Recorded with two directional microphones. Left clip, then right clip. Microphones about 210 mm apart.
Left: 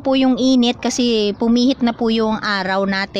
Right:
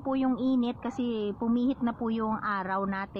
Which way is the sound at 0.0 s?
40° left (ahead or behind).